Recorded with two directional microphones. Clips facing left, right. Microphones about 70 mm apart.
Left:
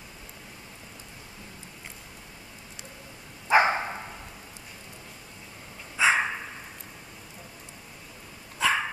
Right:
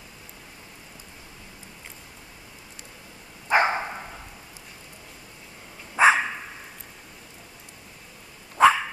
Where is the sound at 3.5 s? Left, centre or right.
Centre.